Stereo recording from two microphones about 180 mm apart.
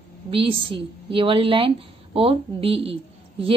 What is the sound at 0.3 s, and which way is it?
A woman's voice, 30° right (ahead or behind).